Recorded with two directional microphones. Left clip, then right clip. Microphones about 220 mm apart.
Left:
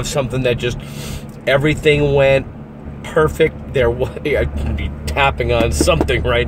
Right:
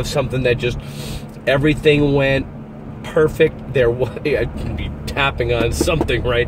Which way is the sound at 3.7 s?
15° left (ahead or behind).